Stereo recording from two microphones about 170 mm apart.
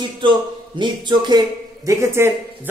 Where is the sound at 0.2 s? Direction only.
30° right (ahead or behind).